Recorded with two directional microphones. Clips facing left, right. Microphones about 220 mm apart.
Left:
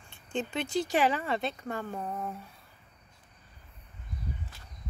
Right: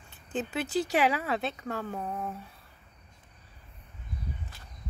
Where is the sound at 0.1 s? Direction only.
5° right (ahead or behind).